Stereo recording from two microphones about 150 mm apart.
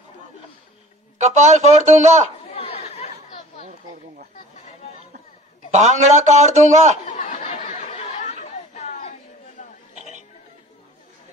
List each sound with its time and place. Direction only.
1.1 s a man's voice: 50° right (ahead or behind)
2.5 s chatter: 40° left (ahead or behind)
5.7 s a man's voice: 50° right (ahead or behind)
7.1 s chatter: 55° left (ahead or behind)
9.6 s burping: 50° left (ahead or behind)
9.9 s music: 50° right (ahead or behind)